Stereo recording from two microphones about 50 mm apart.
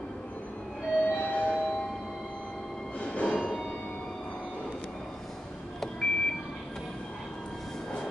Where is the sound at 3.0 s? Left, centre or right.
Left.